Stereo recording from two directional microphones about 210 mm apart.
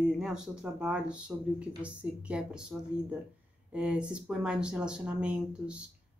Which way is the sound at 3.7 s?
5° right (ahead or behind).